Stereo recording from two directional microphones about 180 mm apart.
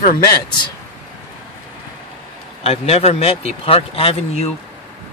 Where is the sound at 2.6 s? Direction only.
35° left (ahead or behind).